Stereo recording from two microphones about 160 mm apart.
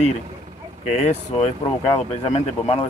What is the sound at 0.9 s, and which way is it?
Speech, 45° left (ahead or behind).